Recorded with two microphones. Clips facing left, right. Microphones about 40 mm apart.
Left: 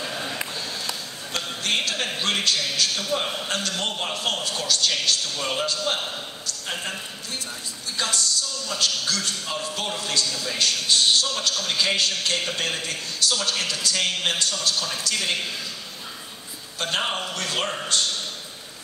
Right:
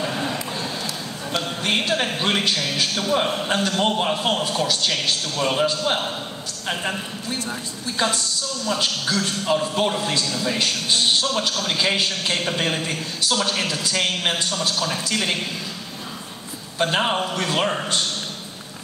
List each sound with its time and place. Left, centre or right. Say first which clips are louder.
0.0 s a sound: right 4 dB; right
1.3 s a man's voice: right 3 dB; right
8.0 s a man's voice: right 3 dB; right
16.7 s a man's voice: right 5 dB; centre